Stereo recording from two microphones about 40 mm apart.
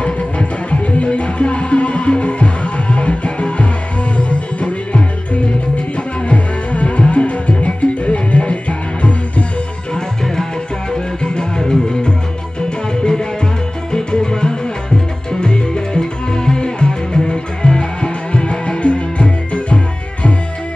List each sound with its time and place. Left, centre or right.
0.0 s music: left
6.2 s music: left
10.9 s music: left